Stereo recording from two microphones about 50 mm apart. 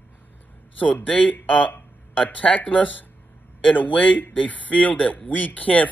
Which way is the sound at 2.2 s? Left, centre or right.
Left.